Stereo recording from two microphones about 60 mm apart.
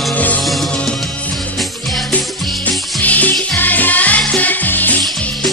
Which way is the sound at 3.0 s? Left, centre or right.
Left.